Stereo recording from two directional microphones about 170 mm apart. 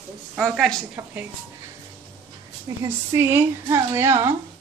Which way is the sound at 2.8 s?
15° right (ahead or behind).